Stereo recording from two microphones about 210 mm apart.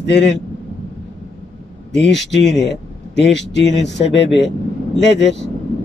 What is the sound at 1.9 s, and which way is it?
Speech, 55° left (ahead or behind).